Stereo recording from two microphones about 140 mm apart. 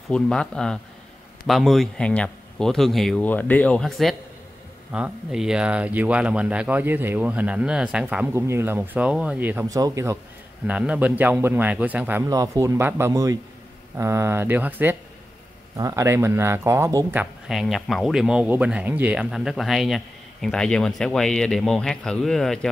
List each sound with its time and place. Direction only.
0.1 s speech: 5° left (ahead or behind); by 9.7 s 15° right (ahead or behind)
9.7 s speech: 25° right (ahead or behind)
10.7 s speech: 10° right (ahead or behind)
12.3 s speech: 25° right (ahead or behind)
17.5 s speech: centre (ahead or behind)